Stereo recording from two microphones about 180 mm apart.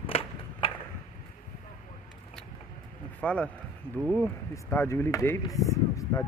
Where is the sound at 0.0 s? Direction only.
30° left (ahead or behind).